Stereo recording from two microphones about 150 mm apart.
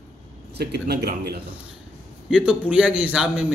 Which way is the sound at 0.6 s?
90° right.